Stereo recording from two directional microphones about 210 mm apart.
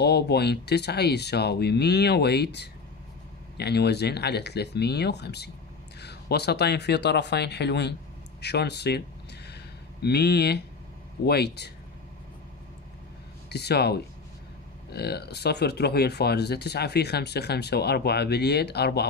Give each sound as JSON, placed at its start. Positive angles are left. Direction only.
{"t": 0.0, "sound": "speech", "side_deg": 50}
{"t": 10.0, "sound": "speech", "side_deg": 50}
{"t": 13.5, "sound": "speech", "side_deg": 50}